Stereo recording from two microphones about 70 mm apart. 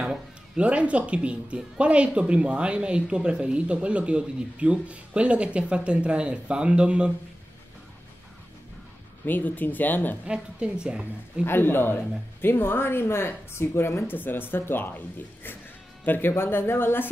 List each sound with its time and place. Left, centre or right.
0.0 s speech: centre
9.2 s speech: left
10.2 s speech: centre
11.4 s a man's voice: left